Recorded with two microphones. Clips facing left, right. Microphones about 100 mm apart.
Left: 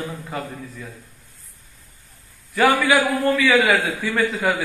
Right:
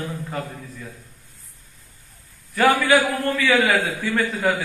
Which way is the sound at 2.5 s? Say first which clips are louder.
Even; 15° left (ahead or behind).